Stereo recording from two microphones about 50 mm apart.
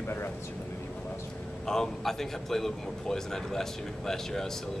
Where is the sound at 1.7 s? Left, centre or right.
Centre.